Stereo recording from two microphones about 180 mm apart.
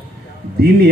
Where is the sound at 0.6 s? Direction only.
60° right (ahead or behind).